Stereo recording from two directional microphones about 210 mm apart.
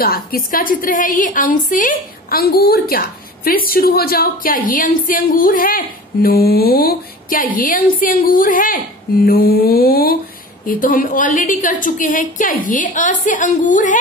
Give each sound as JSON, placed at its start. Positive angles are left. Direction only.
{"t": 0.0, "sound": "a woman's voice", "side_deg": 45}